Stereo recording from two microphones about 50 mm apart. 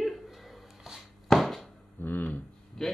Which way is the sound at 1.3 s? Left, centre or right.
Centre.